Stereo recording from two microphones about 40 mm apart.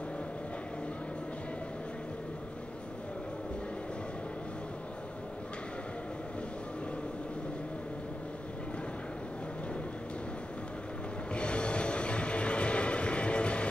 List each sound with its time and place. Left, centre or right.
11.3 s music: left